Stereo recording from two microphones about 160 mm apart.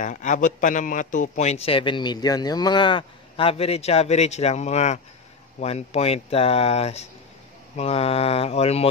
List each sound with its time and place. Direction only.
0.0 s a man's voice: 50° left (ahead or behind)